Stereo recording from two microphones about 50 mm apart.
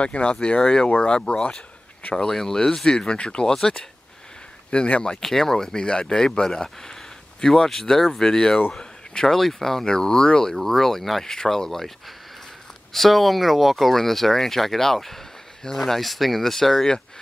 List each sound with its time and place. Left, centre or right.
0.0 s speech: left
4.6 s speech: left
5.2 s speech: centre
10.5 s speech: centre
12.9 s speech: centre